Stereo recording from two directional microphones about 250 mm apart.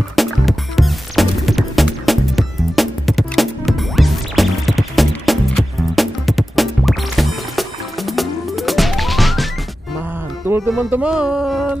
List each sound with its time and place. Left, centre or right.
0.1 s music: centre
10.5 s music: centre